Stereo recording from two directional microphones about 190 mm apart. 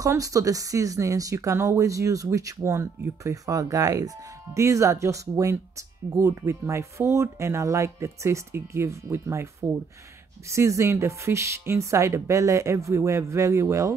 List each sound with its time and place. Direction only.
0.0 s speech: 15° right (ahead or behind)